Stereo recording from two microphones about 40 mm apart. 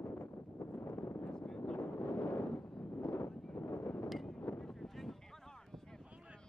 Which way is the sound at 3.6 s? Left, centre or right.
Left.